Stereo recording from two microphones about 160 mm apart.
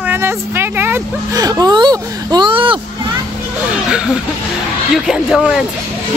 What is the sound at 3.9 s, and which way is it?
Speech, 5° right (ahead or behind).